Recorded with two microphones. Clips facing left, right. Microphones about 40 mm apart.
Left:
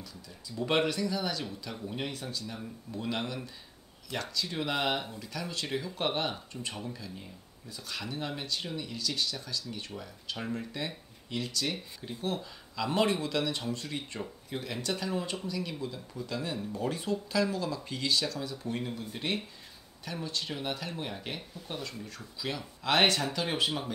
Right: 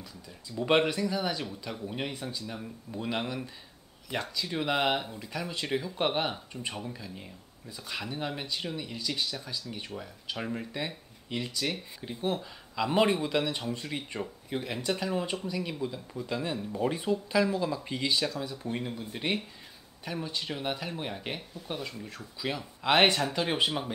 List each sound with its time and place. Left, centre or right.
0.6 s speech: centre